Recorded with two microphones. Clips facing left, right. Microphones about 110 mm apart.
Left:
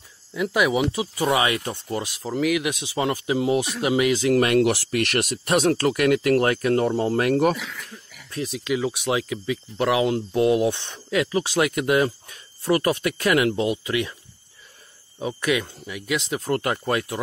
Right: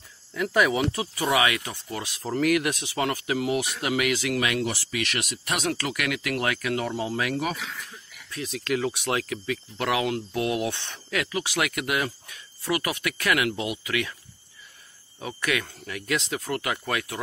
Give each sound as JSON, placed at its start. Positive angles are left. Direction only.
{"t": 0.3, "sound": "speech", "side_deg": 10}
{"t": 1.3, "sound": "speech", "side_deg": 30}
{"t": 2.2, "sound": "speech", "side_deg": 5}
{"t": 2.8, "sound": "speech", "side_deg": 20}
{"t": 4.4, "sound": "speech", "side_deg": 45}
{"t": 4.6, "sound": "speech", "side_deg": 55}
{"t": 8.5, "sound": "speech", "side_deg": 15}
{"t": 15.1, "sound": "speech", "side_deg": 20}
{"t": 16.3, "sound": "speech", "side_deg": 25}